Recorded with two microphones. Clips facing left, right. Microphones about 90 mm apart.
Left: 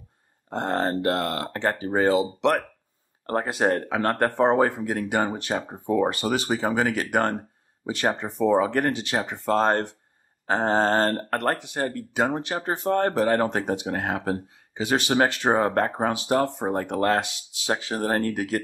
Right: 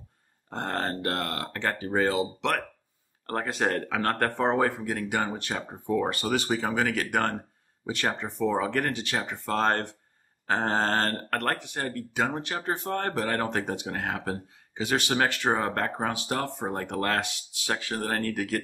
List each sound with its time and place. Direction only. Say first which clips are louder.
0.5 s speech: left 5 dB; 20° left (ahead or behind)